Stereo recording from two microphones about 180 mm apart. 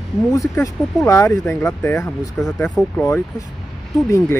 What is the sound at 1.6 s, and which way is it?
Speech, 15° left (ahead or behind).